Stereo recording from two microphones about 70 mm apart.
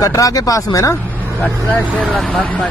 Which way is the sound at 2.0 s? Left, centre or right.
Centre.